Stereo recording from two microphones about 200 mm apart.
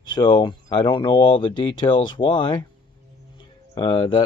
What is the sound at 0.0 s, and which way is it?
Speech, 20° left (ahead or behind).